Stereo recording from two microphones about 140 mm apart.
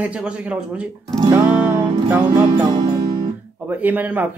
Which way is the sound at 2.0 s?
15° right (ahead or behind).